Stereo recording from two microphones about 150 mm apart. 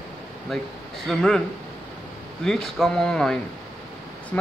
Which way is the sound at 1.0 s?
5° left (ahead or behind).